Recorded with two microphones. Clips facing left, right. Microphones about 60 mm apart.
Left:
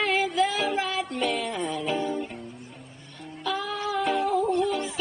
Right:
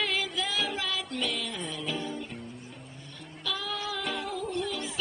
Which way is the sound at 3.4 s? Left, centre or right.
Left.